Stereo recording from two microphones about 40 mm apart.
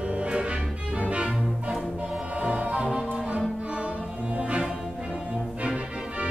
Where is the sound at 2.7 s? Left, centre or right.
Right.